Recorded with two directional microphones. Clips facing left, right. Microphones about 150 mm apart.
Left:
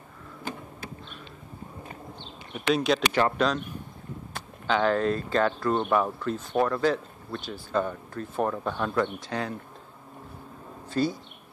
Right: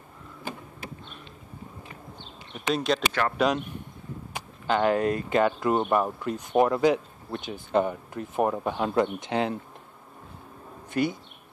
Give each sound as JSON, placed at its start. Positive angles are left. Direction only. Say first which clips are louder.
{"t": 2.5, "sound": "speech", "louder": "left 2 dB", "side_deg": 0}
{"t": 3.1, "sound": "speech", "louder": "left 3 dB", "side_deg": 15}
{"t": 4.3, "sound": "speech", "louder": "right 1 dB", "side_deg": -10}
{"t": 10.9, "sound": "speech", "louder": "even", "side_deg": -20}